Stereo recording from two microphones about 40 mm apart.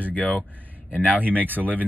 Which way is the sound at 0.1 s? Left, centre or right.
Left.